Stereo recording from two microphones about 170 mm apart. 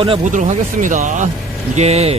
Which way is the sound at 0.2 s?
45° right (ahead or behind).